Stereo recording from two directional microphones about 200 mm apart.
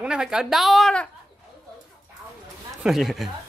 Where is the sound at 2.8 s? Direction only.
Centre (ahead or behind).